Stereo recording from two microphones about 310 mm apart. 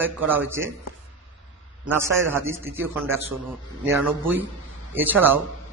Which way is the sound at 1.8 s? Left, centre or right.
Centre.